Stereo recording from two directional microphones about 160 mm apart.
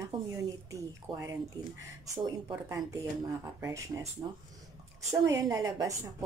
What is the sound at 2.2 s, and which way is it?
A woman's voice, 20° right (ahead or behind).